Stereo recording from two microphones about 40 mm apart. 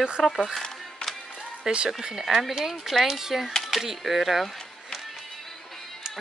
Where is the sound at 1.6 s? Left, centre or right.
Centre.